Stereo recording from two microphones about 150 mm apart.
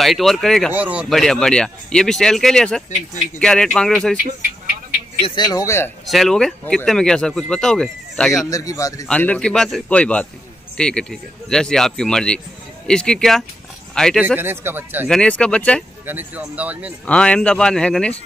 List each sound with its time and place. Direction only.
0.0 s speech: centre (ahead or behind)
0.7 s speech: 10° right (ahead or behind)
5.2 s speech: 30° left (ahead or behind)
6.0 s speech: centre (ahead or behind)
8.5 s speech: 25° left (ahead or behind)
9.0 s a man's voice: 10° left (ahead or behind)
14.2 s speech: 15° right (ahead or behind)
15.0 s a man's voice: 5° left (ahead or behind)
16.1 s speech: 10° right (ahead or behind)
17.0 s a man's voice: 10° left (ahead or behind)